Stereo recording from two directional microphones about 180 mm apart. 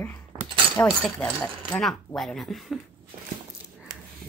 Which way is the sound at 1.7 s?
Centre (ahead or behind).